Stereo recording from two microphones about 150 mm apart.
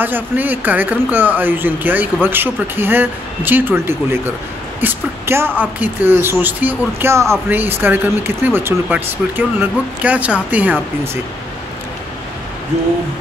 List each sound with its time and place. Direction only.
0.0 s speech: 10° right (ahead or behind)
4.7 s a sound: 15° right (ahead or behind)
5.6 s speech: 10° right (ahead or behind)